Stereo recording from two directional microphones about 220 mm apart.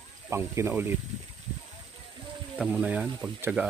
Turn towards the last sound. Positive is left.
turn(degrees=-5)  # may be behind; listen again after turning